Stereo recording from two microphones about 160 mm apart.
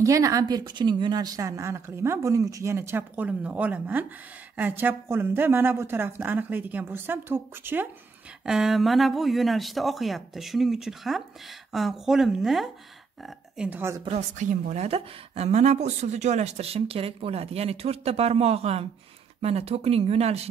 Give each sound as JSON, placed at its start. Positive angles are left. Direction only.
{"t": 0.0, "sound": "speech", "side_deg": -20}
{"t": 8.5, "sound": "speech", "side_deg": 0}
{"t": 14.0, "sound": "a woman's voice", "side_deg": -45}